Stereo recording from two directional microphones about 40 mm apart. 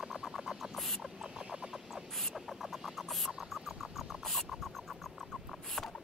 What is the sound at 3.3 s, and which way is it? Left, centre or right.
Rodents, centre.